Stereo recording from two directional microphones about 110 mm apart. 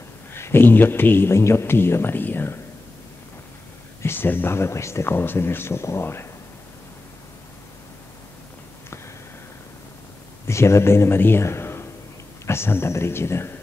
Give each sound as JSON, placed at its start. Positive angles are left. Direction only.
{"t": 0.3, "sound": "speech", "side_deg": 20}
{"t": 4.0, "sound": "speech", "side_deg": 20}
{"t": 10.4, "sound": "a man's voice", "side_deg": 25}